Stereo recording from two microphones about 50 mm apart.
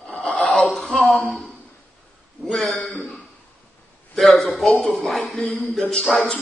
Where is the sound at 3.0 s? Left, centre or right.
Left.